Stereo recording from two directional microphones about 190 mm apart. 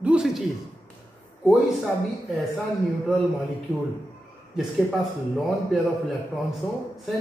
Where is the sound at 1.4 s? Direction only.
Centre (ahead or behind).